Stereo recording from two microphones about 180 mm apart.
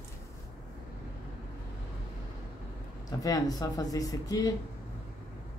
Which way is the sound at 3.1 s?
20° left (ahead or behind).